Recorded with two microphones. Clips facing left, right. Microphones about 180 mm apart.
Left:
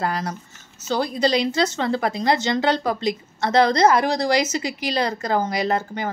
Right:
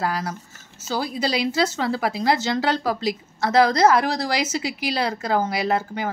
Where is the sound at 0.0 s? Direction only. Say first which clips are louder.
Left 1 dB; 5° right (ahead or behind).